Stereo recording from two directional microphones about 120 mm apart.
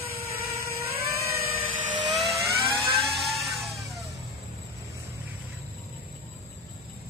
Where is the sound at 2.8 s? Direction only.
Centre (ahead or behind).